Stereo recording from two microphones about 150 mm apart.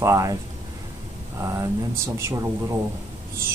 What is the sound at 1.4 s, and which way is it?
Speech, 15° right (ahead or behind).